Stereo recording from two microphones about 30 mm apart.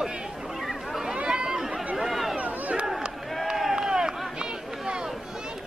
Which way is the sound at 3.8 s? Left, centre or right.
Right.